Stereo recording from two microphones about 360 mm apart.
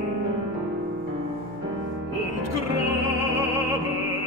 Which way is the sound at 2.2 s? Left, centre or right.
Left.